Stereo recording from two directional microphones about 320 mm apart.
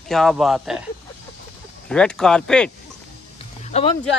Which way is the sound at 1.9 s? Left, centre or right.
Centre.